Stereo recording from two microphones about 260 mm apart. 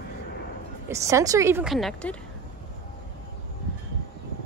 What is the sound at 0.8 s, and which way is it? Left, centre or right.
A woman's voice, centre.